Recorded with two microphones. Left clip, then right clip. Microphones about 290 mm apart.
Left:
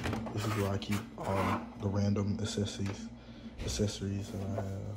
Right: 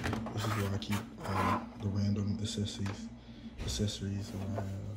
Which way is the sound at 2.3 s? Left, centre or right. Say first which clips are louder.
Left 1 dB; left.